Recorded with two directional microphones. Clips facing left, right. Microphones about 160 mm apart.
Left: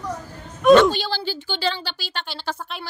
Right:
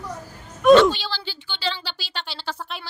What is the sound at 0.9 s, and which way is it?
A woman's voice, 45° left (ahead or behind).